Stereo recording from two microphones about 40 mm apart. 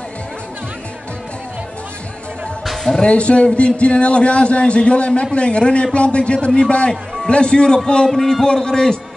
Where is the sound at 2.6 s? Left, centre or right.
Centre.